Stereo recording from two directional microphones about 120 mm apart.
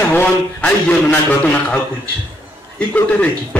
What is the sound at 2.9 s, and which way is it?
Speech, 15° left (ahead or behind).